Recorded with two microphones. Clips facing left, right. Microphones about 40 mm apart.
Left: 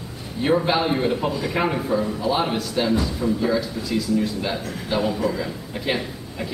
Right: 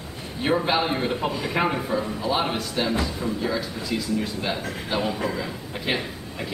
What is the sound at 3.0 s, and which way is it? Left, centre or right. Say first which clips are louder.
Speech: left 2 dB; centre.